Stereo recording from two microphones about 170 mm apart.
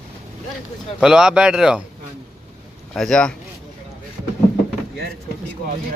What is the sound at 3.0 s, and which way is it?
Speech, 5° left (ahead or behind).